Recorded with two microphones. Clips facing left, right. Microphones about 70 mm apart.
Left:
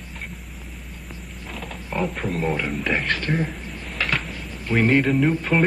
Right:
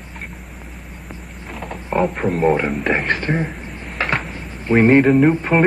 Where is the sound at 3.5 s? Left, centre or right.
Right.